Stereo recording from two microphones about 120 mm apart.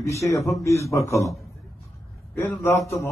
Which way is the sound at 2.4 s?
20° left (ahead or behind).